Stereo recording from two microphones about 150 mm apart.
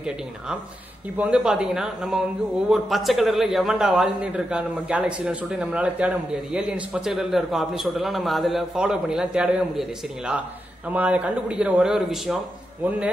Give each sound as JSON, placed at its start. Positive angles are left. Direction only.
{"t": 1.1, "sound": "a man's voice", "side_deg": -10}